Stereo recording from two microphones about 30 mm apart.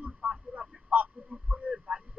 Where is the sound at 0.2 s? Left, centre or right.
Right.